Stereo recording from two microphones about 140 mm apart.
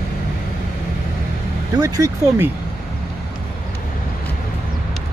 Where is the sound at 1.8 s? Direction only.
25° right (ahead or behind).